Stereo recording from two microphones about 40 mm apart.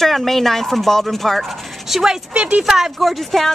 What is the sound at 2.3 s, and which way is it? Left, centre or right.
Speech, right.